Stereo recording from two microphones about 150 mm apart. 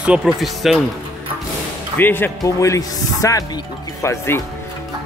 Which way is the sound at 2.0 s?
15° left (ahead or behind).